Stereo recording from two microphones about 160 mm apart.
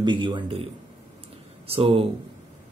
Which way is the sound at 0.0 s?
30° right (ahead or behind).